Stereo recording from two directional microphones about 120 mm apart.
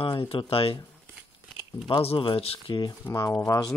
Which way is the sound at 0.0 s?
45° left (ahead or behind).